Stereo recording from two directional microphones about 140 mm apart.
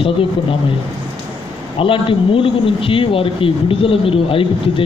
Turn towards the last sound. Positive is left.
turn(degrees=40)  # may be behind; listen again after turning